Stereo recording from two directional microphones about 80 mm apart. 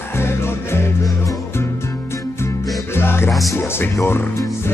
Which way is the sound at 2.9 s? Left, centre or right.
Left.